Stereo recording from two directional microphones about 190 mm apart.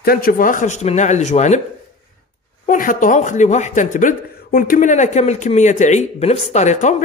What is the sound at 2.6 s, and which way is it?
Speech, 45° left (ahead or behind).